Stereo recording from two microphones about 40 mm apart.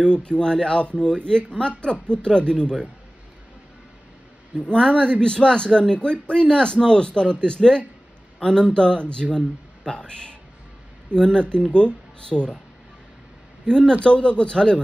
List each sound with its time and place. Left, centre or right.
0.0 s a man's voice: left
4.6 s a man's voice: left
13.7 s a man's voice: centre